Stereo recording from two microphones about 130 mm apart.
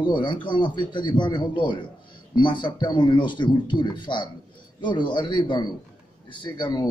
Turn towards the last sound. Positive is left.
turn(degrees=35)  # may be behind; listen again after turning